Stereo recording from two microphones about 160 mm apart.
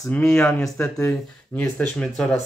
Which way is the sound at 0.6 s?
20° left (ahead or behind).